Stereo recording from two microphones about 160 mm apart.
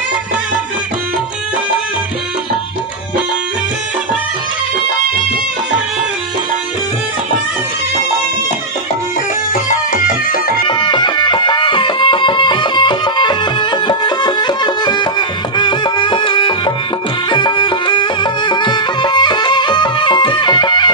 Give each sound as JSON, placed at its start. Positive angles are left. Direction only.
{"t": 9.9, "sound": "music", "side_deg": 60}
{"t": 10.7, "sound": "music", "side_deg": 30}